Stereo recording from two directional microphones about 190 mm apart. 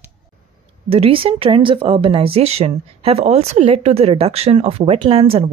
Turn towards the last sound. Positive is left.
turn(degrees=-30)  # may be behind; listen again after turning